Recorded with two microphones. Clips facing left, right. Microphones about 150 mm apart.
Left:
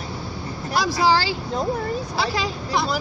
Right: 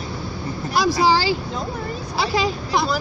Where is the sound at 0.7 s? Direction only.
10° right (ahead or behind).